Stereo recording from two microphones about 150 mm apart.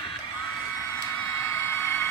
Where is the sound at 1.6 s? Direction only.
15° left (ahead or behind).